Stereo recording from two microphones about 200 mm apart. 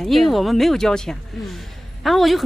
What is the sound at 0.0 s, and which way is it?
A man's voice, centre (ahead or behind).